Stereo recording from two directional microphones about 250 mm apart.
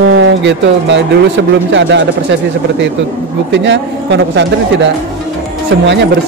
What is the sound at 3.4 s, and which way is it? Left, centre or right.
Speech, right.